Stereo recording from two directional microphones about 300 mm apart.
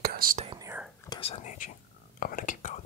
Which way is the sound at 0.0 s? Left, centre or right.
Right.